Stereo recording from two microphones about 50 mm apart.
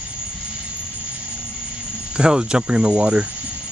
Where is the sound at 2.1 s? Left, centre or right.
Centre.